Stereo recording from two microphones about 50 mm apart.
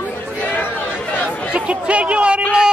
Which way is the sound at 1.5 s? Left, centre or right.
Right.